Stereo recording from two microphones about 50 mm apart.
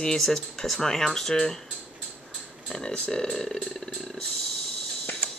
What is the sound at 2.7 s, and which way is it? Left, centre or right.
Speech, centre.